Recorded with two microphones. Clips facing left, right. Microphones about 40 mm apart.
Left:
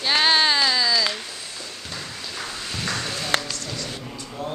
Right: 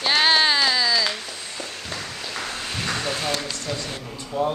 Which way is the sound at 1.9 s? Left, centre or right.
Right.